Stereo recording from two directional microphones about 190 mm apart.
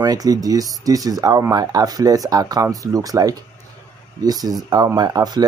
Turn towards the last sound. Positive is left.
turn(degrees=-20)  # may be behind; listen again after turning